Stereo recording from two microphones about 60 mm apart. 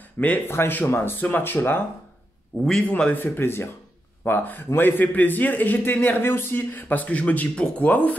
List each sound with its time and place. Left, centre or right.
0.2 s a man's voice: left
2.5 s a man's voice: left
3.2 s a man's voice: left